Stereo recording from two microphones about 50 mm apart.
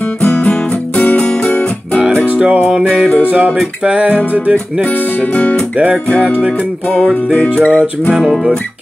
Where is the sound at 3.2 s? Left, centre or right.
Right.